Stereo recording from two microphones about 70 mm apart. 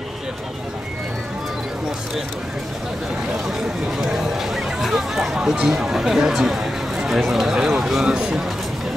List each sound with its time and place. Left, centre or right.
4.0 s speech: centre